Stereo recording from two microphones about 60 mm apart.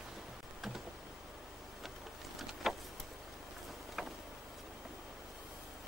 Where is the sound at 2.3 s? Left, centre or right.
Centre.